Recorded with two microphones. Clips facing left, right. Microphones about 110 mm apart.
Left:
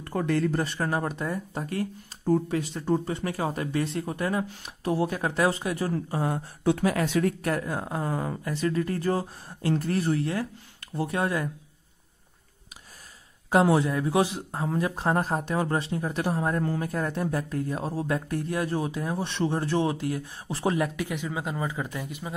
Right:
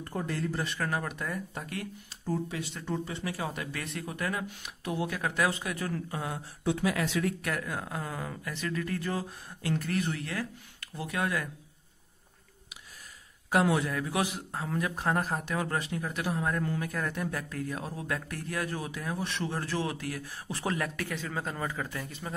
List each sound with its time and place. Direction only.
0.0 s speech: 80° left
0.6 s speech: 35° left (ahead or behind)
2.2 s speech: 45° left (ahead or behind); by 11.4 s 30° left (ahead or behind)
13.5 s speech: 25° left (ahead or behind)